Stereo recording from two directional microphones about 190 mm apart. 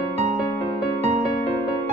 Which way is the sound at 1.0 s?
35° right (ahead or behind).